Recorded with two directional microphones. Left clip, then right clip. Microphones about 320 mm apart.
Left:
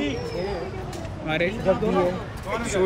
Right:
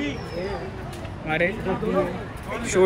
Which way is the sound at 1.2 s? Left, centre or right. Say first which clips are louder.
Right 1 dB; centre.